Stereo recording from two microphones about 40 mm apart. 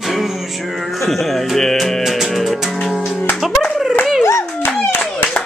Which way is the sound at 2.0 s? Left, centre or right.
Centre.